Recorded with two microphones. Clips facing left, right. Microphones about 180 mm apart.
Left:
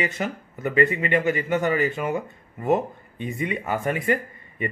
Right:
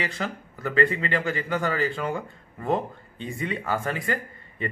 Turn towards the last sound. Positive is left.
turn(degrees=20)  # may be behind; listen again after turning